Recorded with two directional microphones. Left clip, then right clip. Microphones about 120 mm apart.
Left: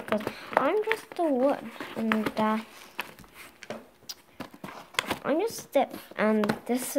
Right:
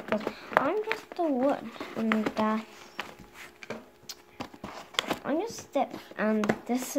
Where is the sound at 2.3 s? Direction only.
15° left (ahead or behind).